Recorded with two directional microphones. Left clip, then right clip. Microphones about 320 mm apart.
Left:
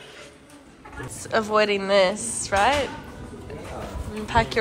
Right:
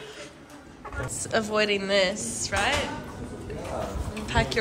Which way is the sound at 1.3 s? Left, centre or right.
Centre.